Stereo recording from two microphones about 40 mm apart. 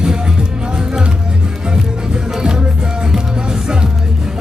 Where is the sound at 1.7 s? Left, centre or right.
Centre.